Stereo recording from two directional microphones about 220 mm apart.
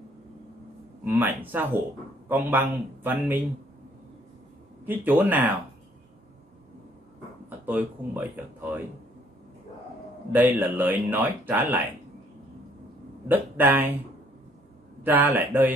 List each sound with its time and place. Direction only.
1.0 s speech: 10° right (ahead or behind)
4.8 s speech: 10° right (ahead or behind)
7.4 s speech: 10° right (ahead or behind)
10.3 s speech: 10° right (ahead or behind)
13.3 s speech: 10° right (ahead or behind)
15.0 s speech: 10° right (ahead or behind)